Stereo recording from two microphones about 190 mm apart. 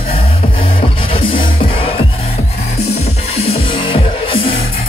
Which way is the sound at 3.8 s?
25° left (ahead or behind).